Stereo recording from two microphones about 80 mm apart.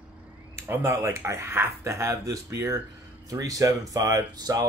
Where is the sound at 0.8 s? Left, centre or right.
Right.